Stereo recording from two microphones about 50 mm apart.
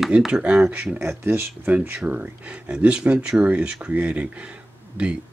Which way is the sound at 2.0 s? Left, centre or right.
Right.